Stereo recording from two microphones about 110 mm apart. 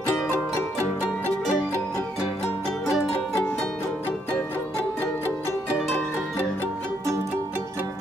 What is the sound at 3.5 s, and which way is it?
Music, 20° left (ahead or behind).